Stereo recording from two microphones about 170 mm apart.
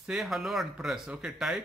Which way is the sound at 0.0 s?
Centre (ahead or behind).